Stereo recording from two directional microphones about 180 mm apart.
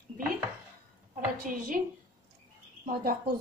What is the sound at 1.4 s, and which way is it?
Speech, 50° right (ahead or behind).